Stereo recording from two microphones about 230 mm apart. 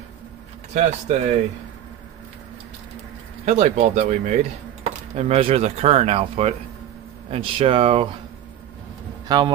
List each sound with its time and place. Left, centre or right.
0.7 s speech: right
3.4 s speech: right
9.3 s speech: centre